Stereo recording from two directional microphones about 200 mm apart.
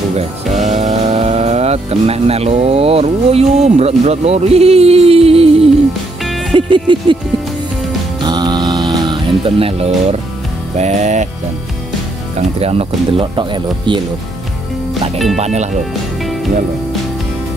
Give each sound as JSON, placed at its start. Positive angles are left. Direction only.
{"t": 0.6, "sound": "speech", "side_deg": -35}
{"t": 6.5, "sound": "music", "side_deg": -25}
{"t": 8.2, "sound": "music", "side_deg": -20}
{"t": 12.4, "sound": "speech", "side_deg": -30}
{"t": 15.3, "sound": "music", "side_deg": -35}